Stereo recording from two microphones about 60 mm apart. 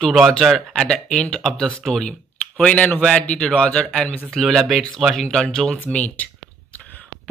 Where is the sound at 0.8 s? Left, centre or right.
Centre.